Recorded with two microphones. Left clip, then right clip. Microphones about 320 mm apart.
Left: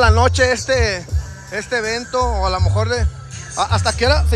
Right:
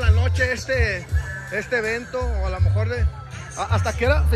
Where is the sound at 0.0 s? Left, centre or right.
Centre.